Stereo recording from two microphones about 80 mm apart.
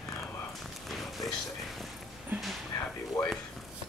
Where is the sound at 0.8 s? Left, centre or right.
Centre.